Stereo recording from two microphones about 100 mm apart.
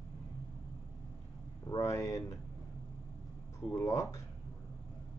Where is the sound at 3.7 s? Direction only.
30° left (ahead or behind).